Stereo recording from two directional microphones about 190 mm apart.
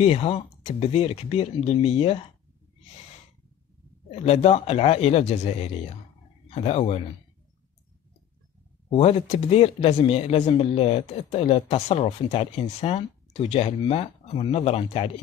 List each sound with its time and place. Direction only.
0.0 s speech: 30° left (ahead or behind)
4.1 s speech: 35° left (ahead or behind)
8.9 s speech: 35° left (ahead or behind)